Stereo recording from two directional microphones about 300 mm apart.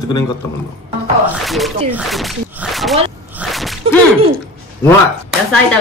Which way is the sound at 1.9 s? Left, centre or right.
Centre.